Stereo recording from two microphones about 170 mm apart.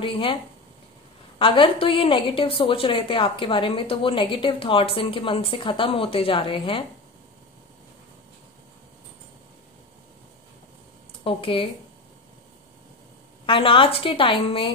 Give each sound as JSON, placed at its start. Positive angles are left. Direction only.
{"t": 0.0, "sound": "a woman's voice", "side_deg": 30}
{"t": 1.4, "sound": "a woman's voice", "side_deg": 30}
{"t": 11.2, "sound": "a woman's voice", "side_deg": 30}
{"t": 13.5, "sound": "a woman's voice", "side_deg": 30}